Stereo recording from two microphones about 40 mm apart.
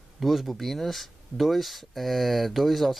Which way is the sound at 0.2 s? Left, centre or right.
Centre.